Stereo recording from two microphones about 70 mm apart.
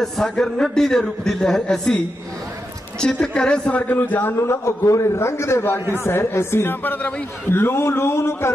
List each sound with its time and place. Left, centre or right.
0.0 s a man's voice: centre
3.0 s a man's voice: centre
7.5 s a man's voice: left